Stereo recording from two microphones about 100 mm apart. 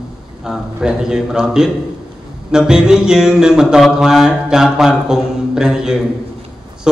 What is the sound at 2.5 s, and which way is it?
Mantra, 5° right (ahead or behind).